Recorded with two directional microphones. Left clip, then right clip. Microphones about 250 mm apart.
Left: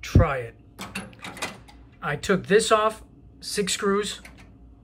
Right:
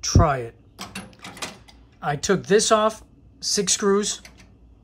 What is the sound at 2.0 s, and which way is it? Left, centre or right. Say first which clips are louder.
Speech: right 2 dB; centre.